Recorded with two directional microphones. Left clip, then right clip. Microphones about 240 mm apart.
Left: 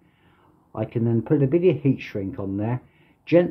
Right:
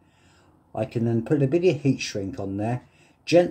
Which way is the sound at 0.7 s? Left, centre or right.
Centre.